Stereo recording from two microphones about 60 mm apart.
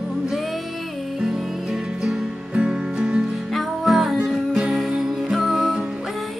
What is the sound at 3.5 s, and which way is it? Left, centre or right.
Music, centre.